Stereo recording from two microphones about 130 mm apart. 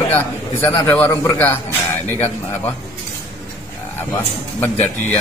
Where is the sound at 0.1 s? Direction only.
15° left (ahead or behind).